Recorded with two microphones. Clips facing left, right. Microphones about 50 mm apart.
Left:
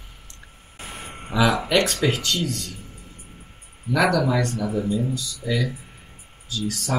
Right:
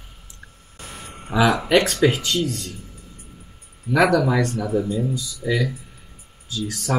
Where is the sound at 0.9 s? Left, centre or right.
Left.